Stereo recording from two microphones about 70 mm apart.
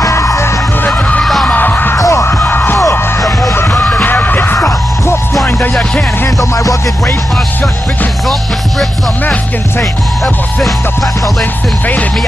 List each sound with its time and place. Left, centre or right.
0.1 s music: left
0.8 s music: left
1.2 s music: centre
1.5 s music: left
2.0 s music: left
2.2 s music: left
2.8 s music: left
3.5 s music: left
3.8 s music: left
4.6 s music: left
6.5 s music: left
9.2 s music: left